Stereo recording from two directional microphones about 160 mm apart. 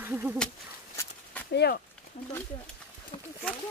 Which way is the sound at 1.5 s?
90° left.